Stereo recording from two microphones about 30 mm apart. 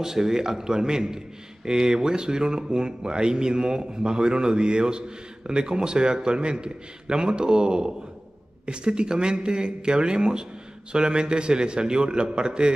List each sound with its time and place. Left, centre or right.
0.0 s a man's voice: centre